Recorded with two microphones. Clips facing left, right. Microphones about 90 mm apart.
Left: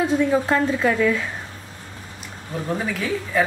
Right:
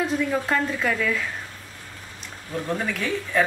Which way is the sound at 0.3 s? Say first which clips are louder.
Left 5 dB; 10° left (ahead or behind).